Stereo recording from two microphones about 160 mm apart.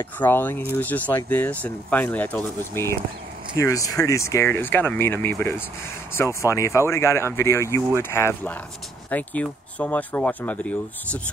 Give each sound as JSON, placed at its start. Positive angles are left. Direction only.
{"t": 0.0, "sound": "speech", "side_deg": 15}